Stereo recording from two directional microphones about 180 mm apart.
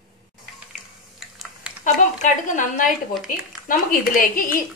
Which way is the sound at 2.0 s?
45° left (ahead or behind).